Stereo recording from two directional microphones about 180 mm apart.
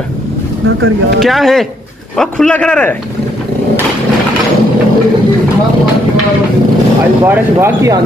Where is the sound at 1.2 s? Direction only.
Centre (ahead or behind).